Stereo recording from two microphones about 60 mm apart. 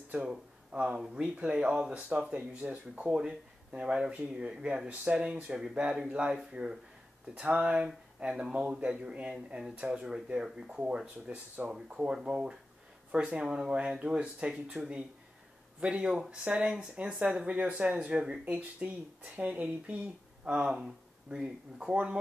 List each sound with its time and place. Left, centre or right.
0.1 s speech: centre
20.4 s speech: centre